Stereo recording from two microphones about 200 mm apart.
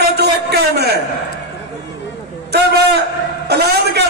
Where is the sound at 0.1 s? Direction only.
55° right (ahead or behind).